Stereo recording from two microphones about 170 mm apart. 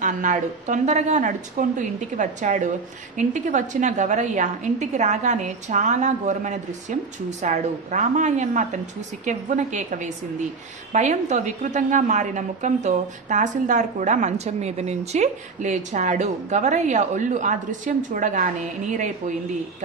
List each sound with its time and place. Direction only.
0.0 s a woman's voice: 50° right (ahead or behind)